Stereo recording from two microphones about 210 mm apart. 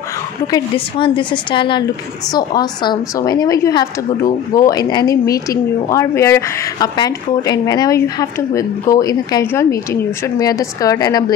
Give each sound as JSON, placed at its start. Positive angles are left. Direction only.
{"t": 0.5, "sound": "a woman's voice", "side_deg": 25}